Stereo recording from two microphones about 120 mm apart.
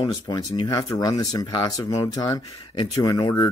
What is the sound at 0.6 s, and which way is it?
Speech, 35° left (ahead or behind).